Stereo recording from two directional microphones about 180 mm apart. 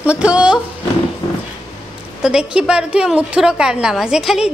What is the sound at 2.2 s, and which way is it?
A woman's voice, 5° right (ahead or behind).